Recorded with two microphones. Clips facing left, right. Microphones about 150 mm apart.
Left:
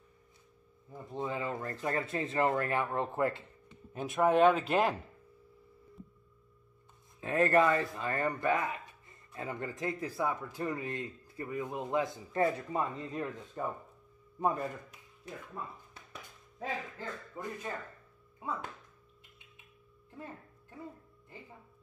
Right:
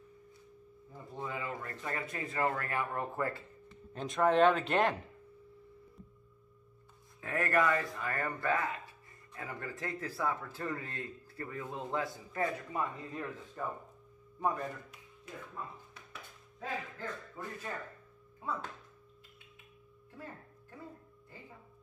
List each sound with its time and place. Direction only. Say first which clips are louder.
1.1 s speech: left 4 dB; 20° left (ahead or behind)
3.9 s speech: left 1 dB; 10° left (ahead or behind)
7.2 s speech: left 5 dB; 25° left (ahead or behind)
17.0 s speech: left 1 dB; 15° left (ahead or behind)